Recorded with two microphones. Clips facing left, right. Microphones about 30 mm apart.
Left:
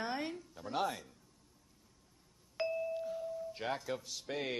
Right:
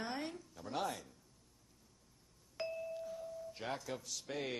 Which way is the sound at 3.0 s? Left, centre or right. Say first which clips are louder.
Left 5 dB; centre.